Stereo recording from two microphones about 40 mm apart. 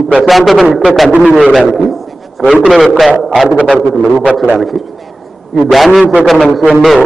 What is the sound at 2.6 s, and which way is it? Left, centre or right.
Speech, centre.